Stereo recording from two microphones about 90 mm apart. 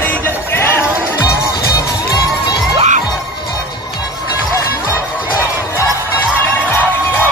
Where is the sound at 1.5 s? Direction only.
50° left (ahead or behind).